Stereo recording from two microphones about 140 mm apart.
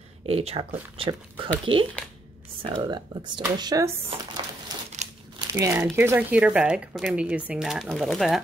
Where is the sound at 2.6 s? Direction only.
35° right (ahead or behind).